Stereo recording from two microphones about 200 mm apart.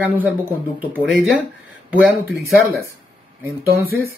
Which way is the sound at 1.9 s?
5° right (ahead or behind).